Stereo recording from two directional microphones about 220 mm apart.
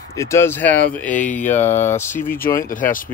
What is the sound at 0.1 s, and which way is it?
Speech, 15° left (ahead or behind).